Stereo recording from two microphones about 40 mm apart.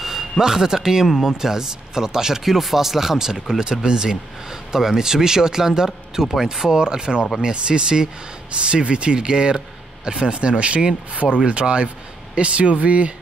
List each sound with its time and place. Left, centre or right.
0.0 s speech: centre; by 13.1 s right